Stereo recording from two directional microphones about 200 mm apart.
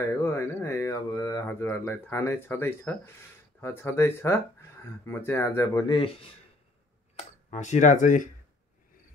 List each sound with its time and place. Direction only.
0.0 s speech: 15° left (ahead or behind)
7.2 s speech: 35° left (ahead or behind)